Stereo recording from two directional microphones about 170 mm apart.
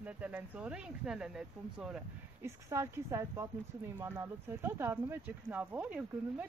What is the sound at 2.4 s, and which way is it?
Speech, 15° right (ahead or behind).